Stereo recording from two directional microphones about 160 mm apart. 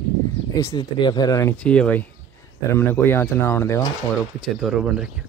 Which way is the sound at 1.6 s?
5° left (ahead or behind).